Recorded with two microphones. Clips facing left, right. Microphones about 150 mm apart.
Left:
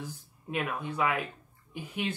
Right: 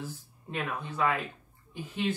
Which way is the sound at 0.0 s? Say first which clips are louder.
Right 1 dB; 10° left (ahead or behind).